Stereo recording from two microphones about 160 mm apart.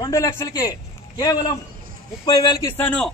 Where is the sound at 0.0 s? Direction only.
20° left (ahead or behind).